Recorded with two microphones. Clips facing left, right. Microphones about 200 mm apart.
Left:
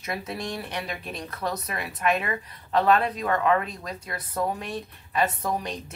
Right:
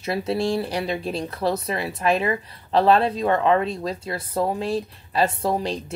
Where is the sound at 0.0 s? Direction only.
30° right (ahead or behind).